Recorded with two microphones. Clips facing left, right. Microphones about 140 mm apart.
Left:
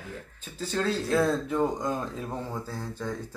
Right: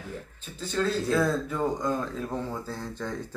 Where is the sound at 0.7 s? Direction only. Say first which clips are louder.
Right 1 dB; 30° left (ahead or behind).